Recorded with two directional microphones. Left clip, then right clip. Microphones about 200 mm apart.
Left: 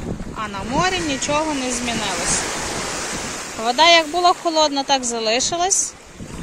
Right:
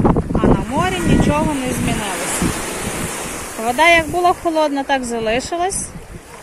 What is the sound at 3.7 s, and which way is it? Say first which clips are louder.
Speech: right 1 dB; centre (ahead or behind).